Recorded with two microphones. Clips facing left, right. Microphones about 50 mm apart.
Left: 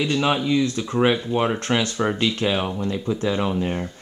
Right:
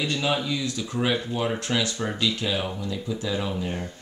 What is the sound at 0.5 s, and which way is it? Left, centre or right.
Speech, left.